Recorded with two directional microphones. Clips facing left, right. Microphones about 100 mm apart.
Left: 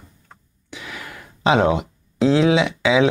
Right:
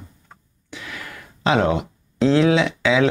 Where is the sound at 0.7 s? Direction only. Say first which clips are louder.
Even; 10° left (ahead or behind).